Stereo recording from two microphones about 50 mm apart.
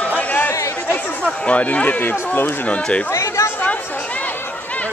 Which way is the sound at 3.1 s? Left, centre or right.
Left.